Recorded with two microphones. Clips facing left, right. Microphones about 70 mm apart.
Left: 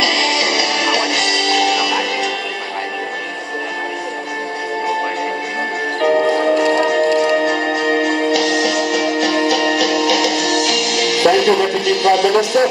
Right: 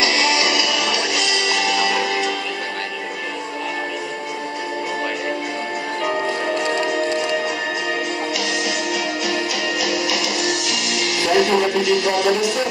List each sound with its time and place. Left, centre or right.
0.0 s music: left
5.9 s music: left